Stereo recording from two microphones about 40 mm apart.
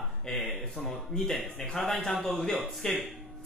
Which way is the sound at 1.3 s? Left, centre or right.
Centre.